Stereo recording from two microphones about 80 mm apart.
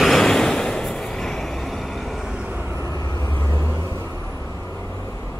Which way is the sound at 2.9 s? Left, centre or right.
Left.